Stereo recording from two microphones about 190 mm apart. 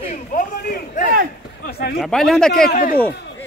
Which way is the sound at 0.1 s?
45° left (ahead or behind).